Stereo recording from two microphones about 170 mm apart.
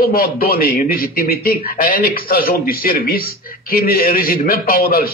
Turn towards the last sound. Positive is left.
turn(degrees=60)  # may be behind; listen again after turning